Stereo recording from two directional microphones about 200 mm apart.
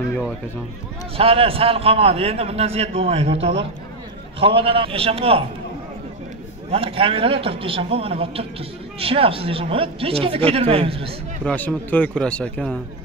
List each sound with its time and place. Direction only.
1.1 s a man's voice: 30° right (ahead or behind)
6.7 s a man's voice: 25° right (ahead or behind)
11.4 s speech: 10° left (ahead or behind)